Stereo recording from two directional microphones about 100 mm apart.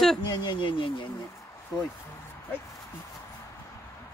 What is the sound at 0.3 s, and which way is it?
Speech, 50° left (ahead or behind).